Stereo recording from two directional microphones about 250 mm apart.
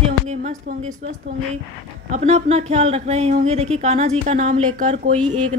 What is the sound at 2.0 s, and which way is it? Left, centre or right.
Speech, right.